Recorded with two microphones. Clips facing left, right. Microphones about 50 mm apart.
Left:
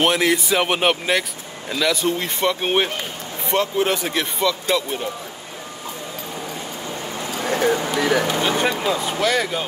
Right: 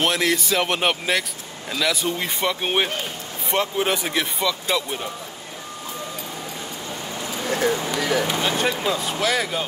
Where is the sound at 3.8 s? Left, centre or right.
Centre.